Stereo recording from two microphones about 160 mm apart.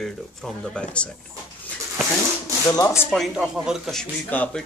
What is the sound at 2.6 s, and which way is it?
Speech, 20° left (ahead or behind).